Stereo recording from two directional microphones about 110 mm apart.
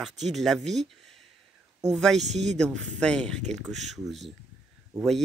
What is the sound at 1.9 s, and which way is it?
Speech, centre (ahead or behind).